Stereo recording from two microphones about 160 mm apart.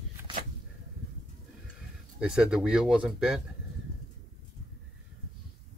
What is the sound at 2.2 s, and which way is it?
Speech, 5° right (ahead or behind).